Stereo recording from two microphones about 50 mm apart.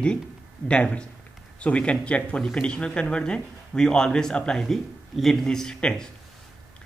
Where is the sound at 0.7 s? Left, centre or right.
Left.